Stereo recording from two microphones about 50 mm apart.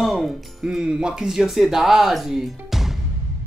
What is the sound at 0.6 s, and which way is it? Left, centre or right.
Speech, centre.